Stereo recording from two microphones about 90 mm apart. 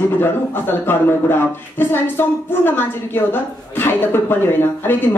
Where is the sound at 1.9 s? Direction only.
25° left (ahead or behind).